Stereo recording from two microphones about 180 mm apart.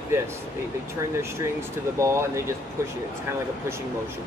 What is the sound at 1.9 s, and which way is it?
Speech, 15° right (ahead or behind).